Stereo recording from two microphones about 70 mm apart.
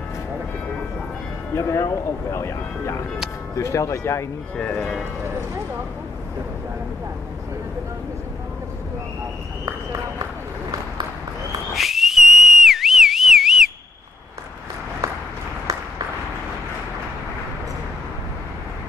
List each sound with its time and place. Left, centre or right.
1.5 s speech: left
4.6 s speech: centre
11.7 s whistle: centre